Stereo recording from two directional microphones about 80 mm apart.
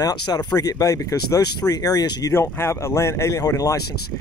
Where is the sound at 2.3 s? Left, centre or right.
Left.